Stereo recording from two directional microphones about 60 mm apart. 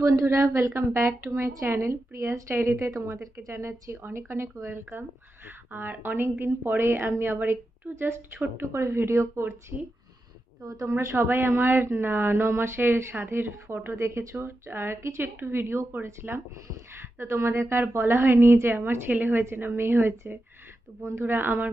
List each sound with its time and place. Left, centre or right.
0.0 s a woman's voice: right
4.0 s speech: right
5.7 s a woman's voice: right
7.9 s speech: right
10.6 s a woman's voice: right
11.1 s a woman's voice: right
13.8 s a woman's voice: right
14.4 s a woman's voice: right
15.6 s speech: right
15.9 s a woman's voice: right
17.2 s speech: right
19.0 s a woman's voice: right